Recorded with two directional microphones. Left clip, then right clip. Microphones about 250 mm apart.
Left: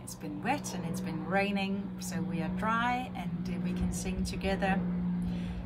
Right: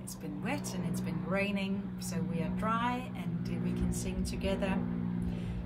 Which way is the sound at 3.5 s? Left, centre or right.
Centre.